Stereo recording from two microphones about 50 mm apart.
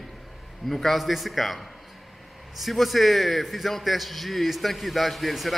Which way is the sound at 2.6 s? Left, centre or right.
Centre.